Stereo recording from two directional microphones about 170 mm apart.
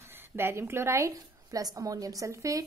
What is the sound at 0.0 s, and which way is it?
A woman's voice, 15° right (ahead or behind).